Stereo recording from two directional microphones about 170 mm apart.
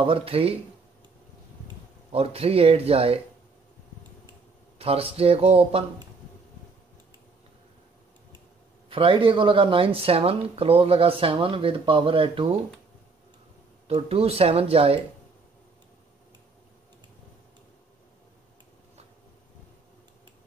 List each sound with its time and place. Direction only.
0.0 s speech: 30° right (ahead or behind)
2.1 s speech: 35° right (ahead or behind)
4.7 s speech: 35° right (ahead or behind)
8.8 s speech: 30° right (ahead or behind)
13.8 s speech: 35° right (ahead or behind)